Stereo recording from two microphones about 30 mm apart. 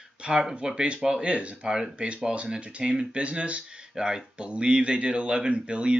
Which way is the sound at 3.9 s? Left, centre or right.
Right.